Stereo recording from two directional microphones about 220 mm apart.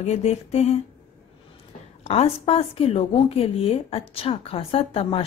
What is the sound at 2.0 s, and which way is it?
A woman's voice, 25° left (ahead or behind).